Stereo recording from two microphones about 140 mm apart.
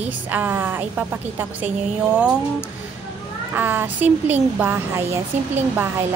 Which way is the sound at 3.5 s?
15° right (ahead or behind).